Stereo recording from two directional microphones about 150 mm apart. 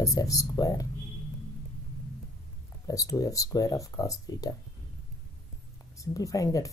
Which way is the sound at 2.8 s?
20° left (ahead or behind).